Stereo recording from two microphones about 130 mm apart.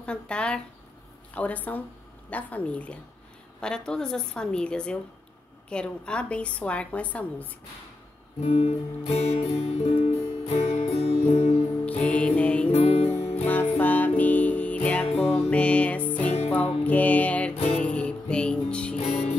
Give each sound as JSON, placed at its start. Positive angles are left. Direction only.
{"t": 0.0, "sound": "a woman's voice", "side_deg": 10}
{"t": 8.4, "sound": "music", "side_deg": 55}
{"t": 12.0, "sound": "music", "side_deg": 10}
{"t": 12.7, "sound": "music", "side_deg": 50}
{"t": 13.5, "sound": "music", "side_deg": 15}